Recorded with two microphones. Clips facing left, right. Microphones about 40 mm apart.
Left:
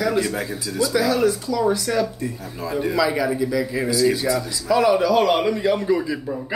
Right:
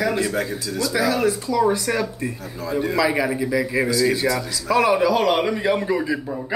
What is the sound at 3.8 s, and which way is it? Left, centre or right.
Speech, centre.